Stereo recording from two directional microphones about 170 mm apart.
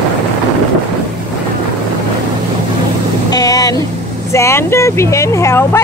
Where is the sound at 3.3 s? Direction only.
20° left (ahead or behind).